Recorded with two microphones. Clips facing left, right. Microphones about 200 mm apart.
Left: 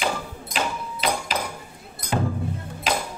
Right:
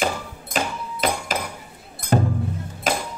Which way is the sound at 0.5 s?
45° right (ahead or behind).